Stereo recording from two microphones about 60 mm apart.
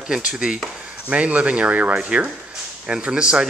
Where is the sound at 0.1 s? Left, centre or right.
Centre.